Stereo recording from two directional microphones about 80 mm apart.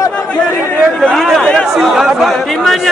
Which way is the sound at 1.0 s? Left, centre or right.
Centre.